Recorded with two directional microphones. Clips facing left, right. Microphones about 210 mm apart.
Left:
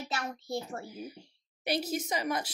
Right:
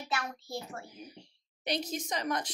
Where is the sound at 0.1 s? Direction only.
30° left (ahead or behind).